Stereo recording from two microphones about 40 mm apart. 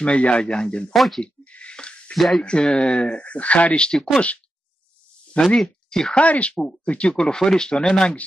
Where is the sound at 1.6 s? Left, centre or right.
Left.